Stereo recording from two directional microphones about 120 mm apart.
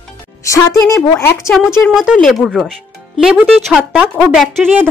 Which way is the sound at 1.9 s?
5° right (ahead or behind).